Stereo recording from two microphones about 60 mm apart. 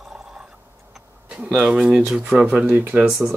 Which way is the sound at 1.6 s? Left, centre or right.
Centre.